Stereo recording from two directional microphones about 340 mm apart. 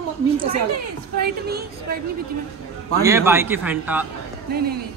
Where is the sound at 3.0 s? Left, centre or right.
Centre.